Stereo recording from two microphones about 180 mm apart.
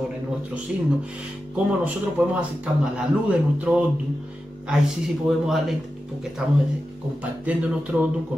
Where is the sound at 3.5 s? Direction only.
5° right (ahead or behind).